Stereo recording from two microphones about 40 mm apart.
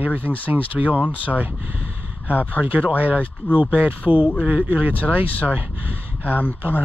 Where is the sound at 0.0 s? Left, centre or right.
Right.